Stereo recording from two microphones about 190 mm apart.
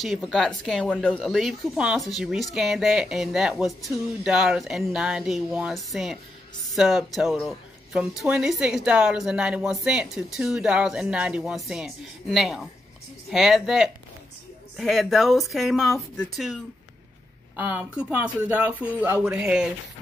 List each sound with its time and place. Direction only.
0.0 s speech: centre (ahead or behind)
17.6 s speech: 10° right (ahead or behind)